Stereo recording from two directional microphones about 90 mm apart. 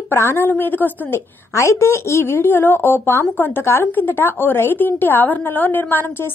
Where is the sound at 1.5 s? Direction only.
30° left (ahead or behind).